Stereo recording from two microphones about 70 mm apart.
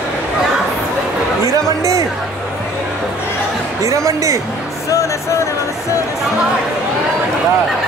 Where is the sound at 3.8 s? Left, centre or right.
Right.